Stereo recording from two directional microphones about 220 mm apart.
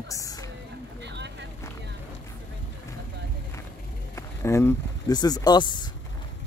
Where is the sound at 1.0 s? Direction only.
50° right (ahead or behind).